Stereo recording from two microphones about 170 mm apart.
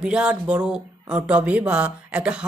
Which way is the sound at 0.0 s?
5° right (ahead or behind).